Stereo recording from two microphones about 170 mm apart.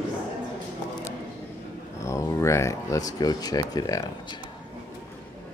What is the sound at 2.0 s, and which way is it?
Speech, 15° left (ahead or behind).